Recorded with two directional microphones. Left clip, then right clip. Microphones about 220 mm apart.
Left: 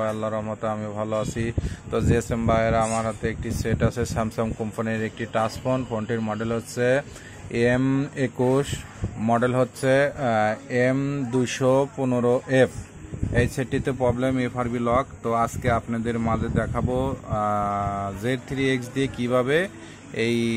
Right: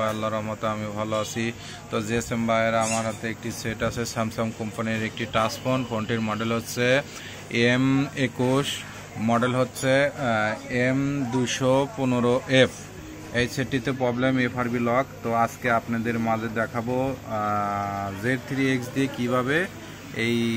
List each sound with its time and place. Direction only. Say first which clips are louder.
0.0 s speech: even; 15° left (ahead or behind)